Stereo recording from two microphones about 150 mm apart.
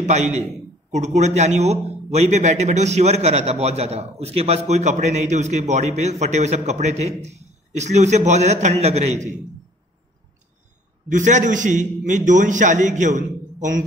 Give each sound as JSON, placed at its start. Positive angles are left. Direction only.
{"t": 0.0, "sound": "a man's voice", "side_deg": -50}
{"t": 11.1, "sound": "a man's voice", "side_deg": -55}